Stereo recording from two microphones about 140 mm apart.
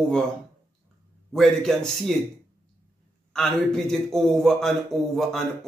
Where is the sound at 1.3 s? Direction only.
Centre (ahead or behind).